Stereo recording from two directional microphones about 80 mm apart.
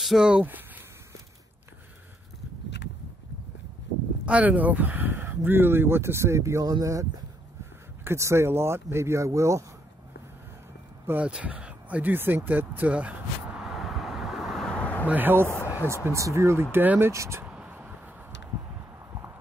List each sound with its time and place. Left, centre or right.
0.0 s speech: centre
4.3 s speech: centre; by 6.6 s right
6.6 s speech: right
11.1 s speech: centre
13.7 s vehicle: centre
14.7 s a sound: centre
15.0 s speech: right
16.7 s speech: right
17.1 s speech: right
17.5 s a sound: centre